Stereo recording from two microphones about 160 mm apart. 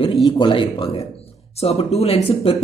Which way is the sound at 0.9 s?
40° left (ahead or behind).